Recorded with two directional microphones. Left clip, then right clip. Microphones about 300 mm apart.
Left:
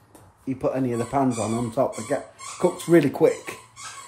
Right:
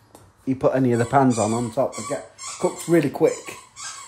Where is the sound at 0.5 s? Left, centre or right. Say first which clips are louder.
Right 5 dB; right.